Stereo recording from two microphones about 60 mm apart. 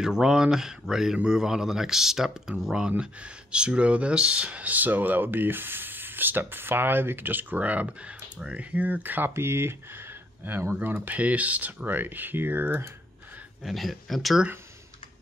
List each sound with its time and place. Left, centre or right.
0.0 s speech: centre
8.7 s speech: right
9.3 s speech: right
13.6 s speech: centre